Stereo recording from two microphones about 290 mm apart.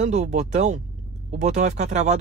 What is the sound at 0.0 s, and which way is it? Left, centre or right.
Speech, right.